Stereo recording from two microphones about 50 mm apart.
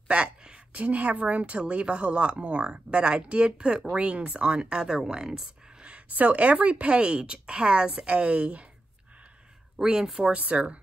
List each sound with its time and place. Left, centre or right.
0.1 s a sound: right
0.8 s speech: right
9.8 s speech: centre
10.3 s speech: right